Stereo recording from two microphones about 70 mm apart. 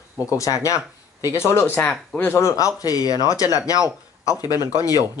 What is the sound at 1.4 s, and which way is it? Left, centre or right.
Speech, left.